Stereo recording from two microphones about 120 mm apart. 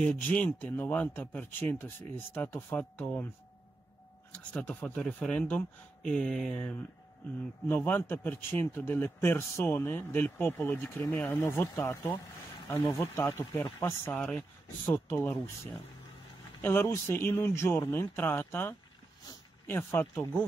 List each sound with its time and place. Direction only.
0.0 s a man's voice: 10° left (ahead or behind)
4.3 s a man's voice: 10° left (ahead or behind)